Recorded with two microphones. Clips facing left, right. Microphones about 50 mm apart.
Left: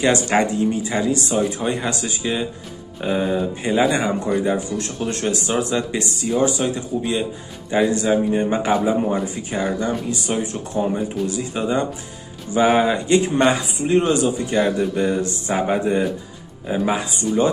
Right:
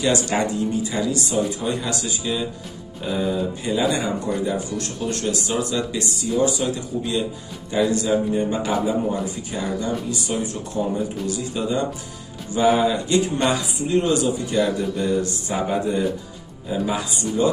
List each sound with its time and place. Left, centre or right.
0.0 s a man's voice: left
7.7 s a man's voice: left